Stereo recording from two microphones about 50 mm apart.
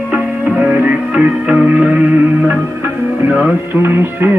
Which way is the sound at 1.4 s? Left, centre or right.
Centre.